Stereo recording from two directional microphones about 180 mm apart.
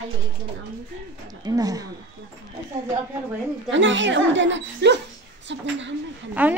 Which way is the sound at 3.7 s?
90° right.